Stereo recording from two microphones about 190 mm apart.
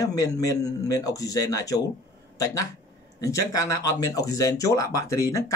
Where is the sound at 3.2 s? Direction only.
15° left (ahead or behind).